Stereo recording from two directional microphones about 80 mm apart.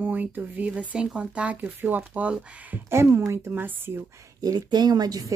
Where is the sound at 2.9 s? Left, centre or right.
Right.